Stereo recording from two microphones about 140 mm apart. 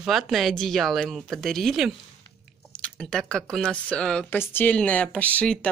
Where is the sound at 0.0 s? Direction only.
Centre (ahead or behind).